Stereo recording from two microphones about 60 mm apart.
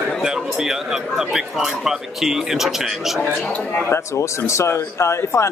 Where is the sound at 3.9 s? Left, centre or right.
Left.